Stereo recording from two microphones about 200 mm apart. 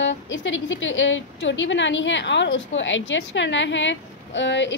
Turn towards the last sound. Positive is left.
turn(degrees=65)  # may be behind; listen again after turning